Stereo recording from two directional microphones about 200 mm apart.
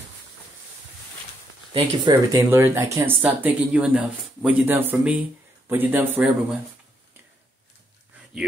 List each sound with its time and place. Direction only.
1.7 s speech: 25° right (ahead or behind)
2.5 s speech: 10° right (ahead or behind)